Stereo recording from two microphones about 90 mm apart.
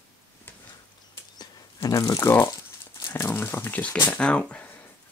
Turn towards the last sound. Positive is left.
turn(degrees=15)  # may be behind; listen again after turning